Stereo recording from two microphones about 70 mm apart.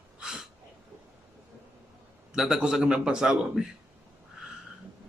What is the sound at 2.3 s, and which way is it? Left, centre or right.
Speech, centre.